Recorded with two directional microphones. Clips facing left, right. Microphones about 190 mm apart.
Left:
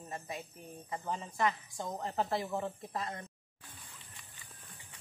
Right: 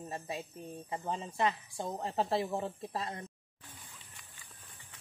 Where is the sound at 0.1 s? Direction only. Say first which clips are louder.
Right 1 dB; 30° right (ahead or behind).